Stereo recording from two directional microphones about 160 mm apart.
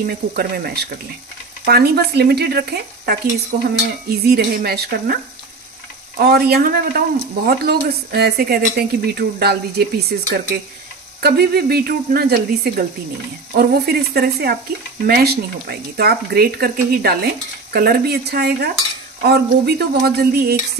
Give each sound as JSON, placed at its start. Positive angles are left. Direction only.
{"t": 0.0, "sound": "speech", "side_deg": -75}
{"t": 3.5, "sound": "stir", "side_deg": -90}
{"t": 4.1, "sound": "speech", "side_deg": -75}